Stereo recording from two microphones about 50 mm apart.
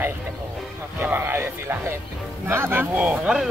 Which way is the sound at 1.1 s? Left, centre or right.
Right.